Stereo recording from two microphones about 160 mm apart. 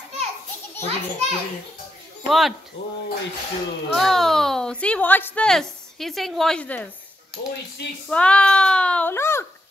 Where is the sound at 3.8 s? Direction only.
Centre (ahead or behind).